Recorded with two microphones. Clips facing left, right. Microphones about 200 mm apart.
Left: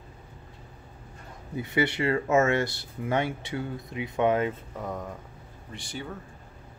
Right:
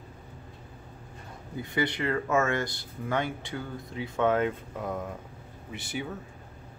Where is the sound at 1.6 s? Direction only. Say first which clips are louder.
Left 3 dB; 25° left (ahead or behind).